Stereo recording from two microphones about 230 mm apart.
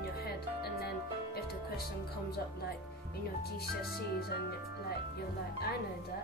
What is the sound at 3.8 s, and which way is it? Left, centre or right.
Music, left.